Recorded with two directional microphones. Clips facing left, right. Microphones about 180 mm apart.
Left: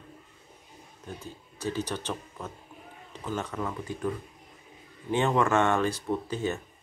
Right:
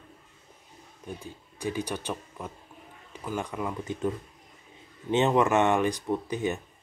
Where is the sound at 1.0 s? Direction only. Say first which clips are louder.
Right 1 dB; 15° right (ahead or behind).